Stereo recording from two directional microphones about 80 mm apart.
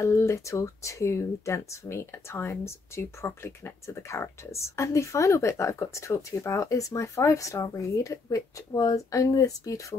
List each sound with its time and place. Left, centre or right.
0.0 s speech: left